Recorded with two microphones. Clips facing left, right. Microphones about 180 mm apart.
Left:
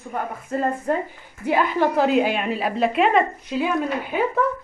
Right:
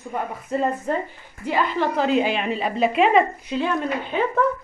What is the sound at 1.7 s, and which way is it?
A woman's voice, 10° left (ahead or behind).